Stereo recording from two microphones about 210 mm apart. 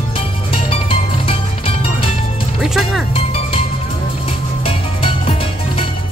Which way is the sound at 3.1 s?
25° left (ahead or behind).